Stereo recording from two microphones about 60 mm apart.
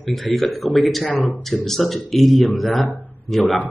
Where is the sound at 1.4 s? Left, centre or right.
Centre.